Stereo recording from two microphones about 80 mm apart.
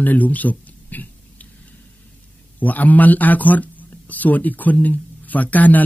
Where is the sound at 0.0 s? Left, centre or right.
Left.